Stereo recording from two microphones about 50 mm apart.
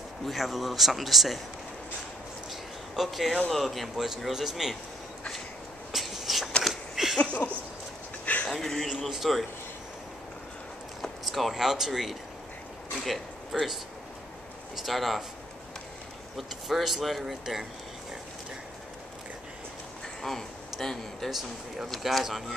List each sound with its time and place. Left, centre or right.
0.2 s speech: centre
3.0 s speech: centre
5.9 s a sound: centre
7.2 s a sound: left
8.5 s speech: centre
11.0 s speech: centre
13.0 s a sound: centre
14.9 s speech: centre
16.3 s speech: centre
20.2 s speech: centre
21.3 s speech: centre